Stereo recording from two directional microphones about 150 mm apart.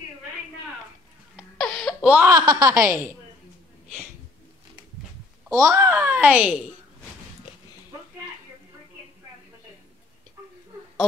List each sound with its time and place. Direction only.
1.6 s a sound: 5° left (ahead or behind)
2.2 s a woman's voice: 25° right (ahead or behind)
5.5 s a child's voice: 20° right (ahead or behind)